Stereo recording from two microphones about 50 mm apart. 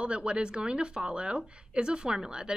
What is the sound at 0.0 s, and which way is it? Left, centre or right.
A woman's voice, right.